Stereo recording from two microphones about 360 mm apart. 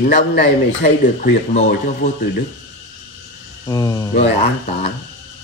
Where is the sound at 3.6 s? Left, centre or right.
Centre.